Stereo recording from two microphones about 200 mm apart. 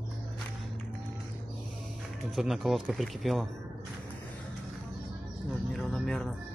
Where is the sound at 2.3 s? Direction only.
Centre (ahead or behind).